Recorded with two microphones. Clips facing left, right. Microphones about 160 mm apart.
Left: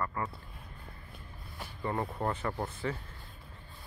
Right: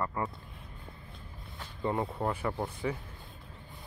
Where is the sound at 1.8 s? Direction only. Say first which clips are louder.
Right 2 dB; 20° right (ahead or behind).